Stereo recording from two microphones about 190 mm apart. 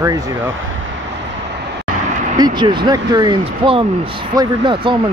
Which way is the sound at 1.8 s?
40° right (ahead or behind).